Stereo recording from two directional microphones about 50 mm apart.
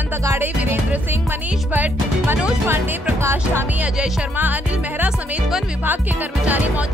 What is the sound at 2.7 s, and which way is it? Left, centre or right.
Speech, right.